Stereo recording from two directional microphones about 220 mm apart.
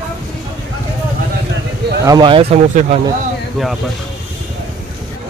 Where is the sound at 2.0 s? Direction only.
20° right (ahead or behind).